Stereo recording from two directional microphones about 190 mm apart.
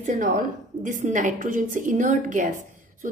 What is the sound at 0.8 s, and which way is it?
A woman's voice, 40° right (ahead or behind).